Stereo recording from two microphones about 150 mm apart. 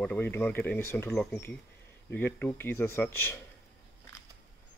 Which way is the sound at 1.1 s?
5° left (ahead or behind).